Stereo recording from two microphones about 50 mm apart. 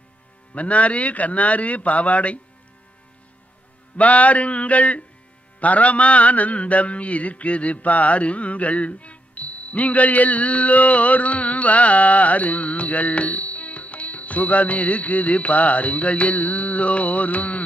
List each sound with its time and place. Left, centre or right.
0.6 s a man's voice: left
3.9 s a man's voice: left